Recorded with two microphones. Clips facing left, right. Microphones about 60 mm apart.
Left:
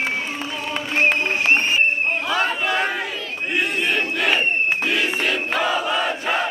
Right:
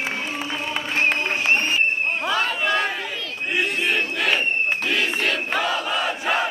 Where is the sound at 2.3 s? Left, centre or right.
Centre.